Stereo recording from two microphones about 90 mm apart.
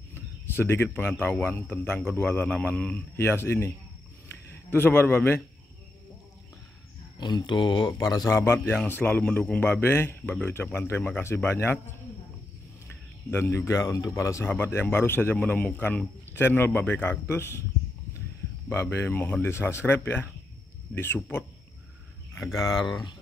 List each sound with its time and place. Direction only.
0.6 s speech: 25° left (ahead or behind)
3.3 s a man's voice: 25° left (ahead or behind)
7.2 s speech: 55° left (ahead or behind)
8.3 s speech: 30° left (ahead or behind)
13.3 s speech: 30° left (ahead or behind)
14.5 s speech: 25° left (ahead or behind)
18.7 s speech: 25° left (ahead or behind)
22.3 s a sound: 25° left (ahead or behind)
22.6 s speech: 45° left (ahead or behind)